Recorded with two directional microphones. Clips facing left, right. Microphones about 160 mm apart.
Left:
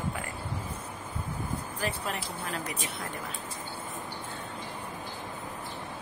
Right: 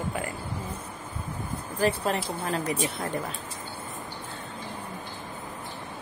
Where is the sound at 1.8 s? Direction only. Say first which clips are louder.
Right 10 dB; 35° right (ahead or behind).